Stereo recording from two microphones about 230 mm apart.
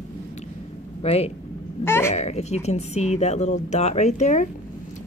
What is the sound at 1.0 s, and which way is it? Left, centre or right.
Speech, left.